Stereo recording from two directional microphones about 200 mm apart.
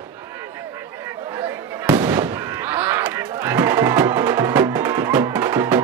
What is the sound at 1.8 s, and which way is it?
Fireworks, 15° right (ahead or behind).